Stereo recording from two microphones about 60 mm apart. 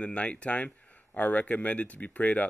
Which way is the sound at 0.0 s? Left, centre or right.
Left.